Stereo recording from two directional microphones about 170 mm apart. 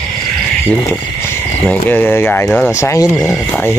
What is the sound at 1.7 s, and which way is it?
Speech, 10° left (ahead or behind).